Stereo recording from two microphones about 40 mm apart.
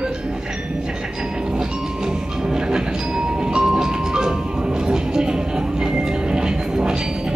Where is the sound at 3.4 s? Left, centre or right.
Centre.